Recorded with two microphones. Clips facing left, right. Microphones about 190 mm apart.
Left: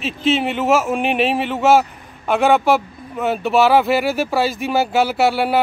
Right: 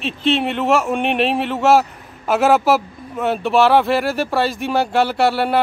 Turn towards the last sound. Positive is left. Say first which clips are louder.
# even
turn(degrees=0)  # may be behind; listen again after turning